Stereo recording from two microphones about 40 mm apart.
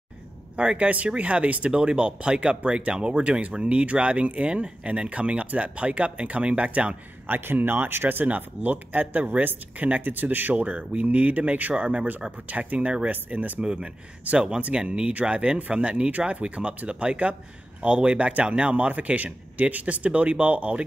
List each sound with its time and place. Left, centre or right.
0.6 s a man's voice: right
1.7 s a man's voice: right
7.2 s speech: right
8.4 s speech: right
11.8 s a man's voice: right
13.6 s speech: right
16.1 s a man's voice: right